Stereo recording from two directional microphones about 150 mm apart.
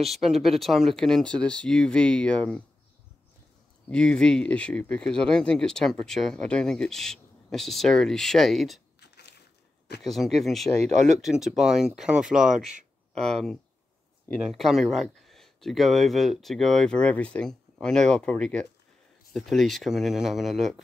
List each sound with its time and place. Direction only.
0.0 s speech: centre (ahead or behind)
3.9 s speech: 5° left (ahead or behind)
9.0 s biting: 90° left
10.0 s speech: centre (ahead or behind)